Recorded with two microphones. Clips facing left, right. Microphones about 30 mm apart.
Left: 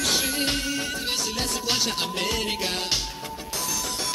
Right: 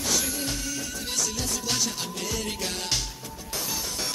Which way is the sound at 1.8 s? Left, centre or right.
Left.